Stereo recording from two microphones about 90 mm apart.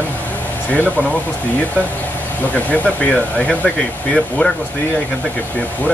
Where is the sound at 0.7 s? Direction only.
15° left (ahead or behind).